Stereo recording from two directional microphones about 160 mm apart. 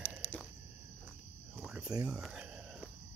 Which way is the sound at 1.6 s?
5° right (ahead or behind).